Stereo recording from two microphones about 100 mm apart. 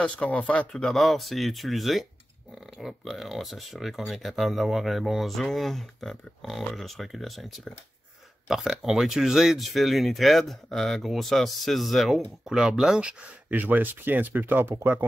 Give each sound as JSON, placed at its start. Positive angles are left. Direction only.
{"t": 0.0, "sound": "speech", "side_deg": 10}